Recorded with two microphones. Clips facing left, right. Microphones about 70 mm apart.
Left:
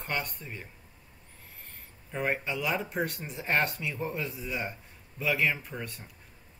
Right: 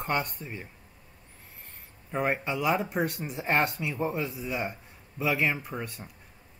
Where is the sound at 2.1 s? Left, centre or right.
Centre.